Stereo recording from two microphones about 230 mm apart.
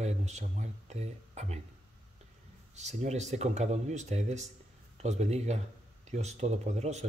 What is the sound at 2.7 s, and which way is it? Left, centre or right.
Speech, right.